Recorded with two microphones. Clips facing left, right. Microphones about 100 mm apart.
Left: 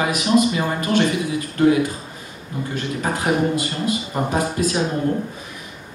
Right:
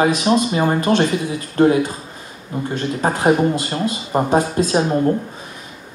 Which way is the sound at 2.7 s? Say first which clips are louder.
Right 4 dB; 30° right (ahead or behind).